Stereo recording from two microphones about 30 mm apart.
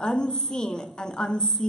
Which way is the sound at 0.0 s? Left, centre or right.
Left.